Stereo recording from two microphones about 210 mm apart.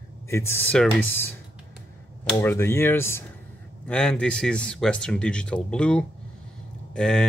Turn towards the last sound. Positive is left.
turn(degrees=5)  # may be behind; listen again after turning